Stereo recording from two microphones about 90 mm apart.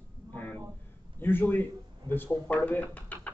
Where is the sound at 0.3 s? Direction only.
20° left (ahead or behind).